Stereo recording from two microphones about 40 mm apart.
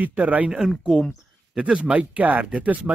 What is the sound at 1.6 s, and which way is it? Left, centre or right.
Speech, right.